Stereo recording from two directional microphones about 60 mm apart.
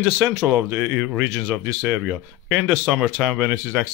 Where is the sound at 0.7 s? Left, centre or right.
Right.